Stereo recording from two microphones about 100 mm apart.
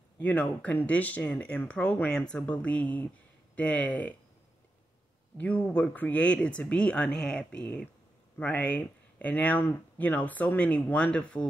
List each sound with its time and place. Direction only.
0.2 s speech: 15° left (ahead or behind)
5.4 s speech: 15° left (ahead or behind)